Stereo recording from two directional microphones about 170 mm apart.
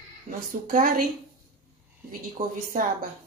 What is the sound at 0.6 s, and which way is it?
Speech, 55° right (ahead or behind).